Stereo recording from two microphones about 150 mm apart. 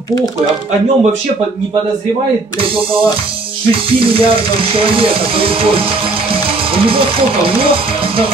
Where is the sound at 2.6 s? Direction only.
35° right (ahead or behind).